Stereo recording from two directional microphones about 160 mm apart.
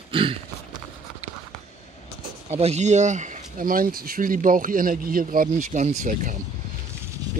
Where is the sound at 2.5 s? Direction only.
45° right (ahead or behind).